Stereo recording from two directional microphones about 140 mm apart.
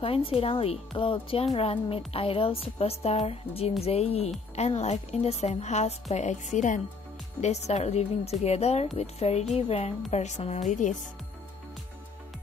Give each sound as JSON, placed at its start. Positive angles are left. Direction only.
{"t": 0.0, "sound": "speech", "side_deg": 40}
{"t": 7.4, "sound": "speech", "side_deg": 50}